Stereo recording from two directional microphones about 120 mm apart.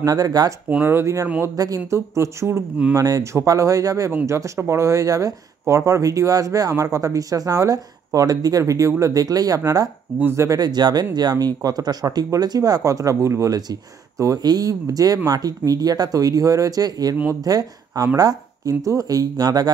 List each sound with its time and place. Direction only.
0.0 s speech: 30° right (ahead or behind)
0.7 s speech: 15° right (ahead or behind); by 19.7 s 30° right (ahead or behind)